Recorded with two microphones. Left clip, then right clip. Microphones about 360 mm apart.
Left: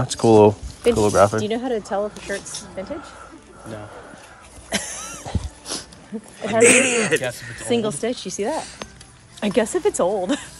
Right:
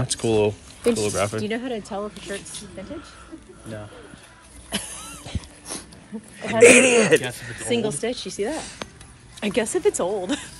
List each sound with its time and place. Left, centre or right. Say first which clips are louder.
0.0 s speech: left 8 dB; centre
4.6 s a sound: left 5 dB; left
6.6 s speech: right 3 dB; centre
7.6 s speech: left 2 dB; left